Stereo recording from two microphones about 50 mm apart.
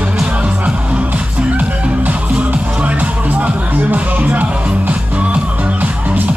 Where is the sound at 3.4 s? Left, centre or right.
Right.